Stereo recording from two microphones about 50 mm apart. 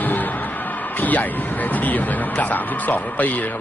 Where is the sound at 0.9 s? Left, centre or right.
Left.